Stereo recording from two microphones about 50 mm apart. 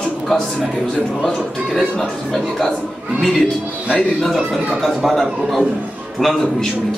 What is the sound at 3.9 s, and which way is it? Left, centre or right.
Speech, centre.